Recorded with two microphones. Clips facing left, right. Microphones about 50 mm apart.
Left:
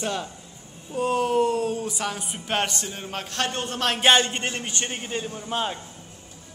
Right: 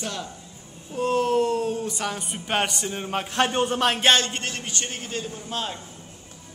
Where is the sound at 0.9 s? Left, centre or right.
Centre.